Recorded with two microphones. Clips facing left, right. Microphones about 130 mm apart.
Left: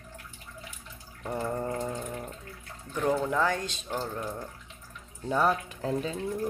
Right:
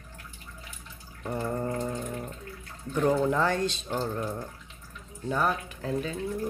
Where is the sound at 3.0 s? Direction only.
5° right (ahead or behind).